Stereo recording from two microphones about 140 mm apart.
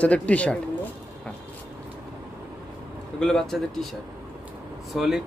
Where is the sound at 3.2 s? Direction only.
5° left (ahead or behind).